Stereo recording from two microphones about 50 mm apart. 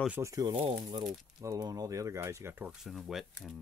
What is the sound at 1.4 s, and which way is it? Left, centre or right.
Speech, right.